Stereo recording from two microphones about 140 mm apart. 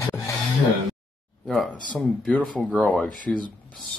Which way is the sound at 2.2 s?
5° left (ahead or behind).